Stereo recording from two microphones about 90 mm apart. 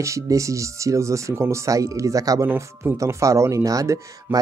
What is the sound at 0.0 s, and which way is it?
Speech, 35° right (ahead or behind).